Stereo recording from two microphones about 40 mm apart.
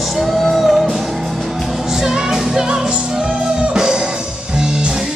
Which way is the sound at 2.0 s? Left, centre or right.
Centre.